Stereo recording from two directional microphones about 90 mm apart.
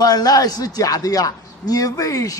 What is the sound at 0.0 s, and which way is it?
A man's voice, 45° left (ahead or behind).